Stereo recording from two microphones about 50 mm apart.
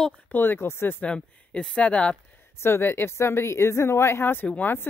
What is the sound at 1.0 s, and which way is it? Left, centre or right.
Speech, left.